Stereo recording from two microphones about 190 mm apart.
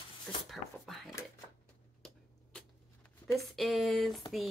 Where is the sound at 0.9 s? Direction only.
Centre (ahead or behind).